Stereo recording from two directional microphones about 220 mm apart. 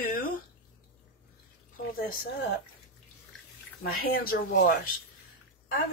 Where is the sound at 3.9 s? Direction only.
45° left (ahead or behind).